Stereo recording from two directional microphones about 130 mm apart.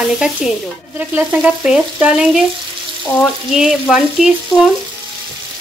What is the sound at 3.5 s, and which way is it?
Frying, 5° right (ahead or behind).